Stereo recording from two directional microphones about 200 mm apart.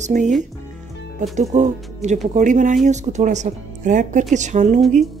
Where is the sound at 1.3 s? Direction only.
35° right (ahead or behind).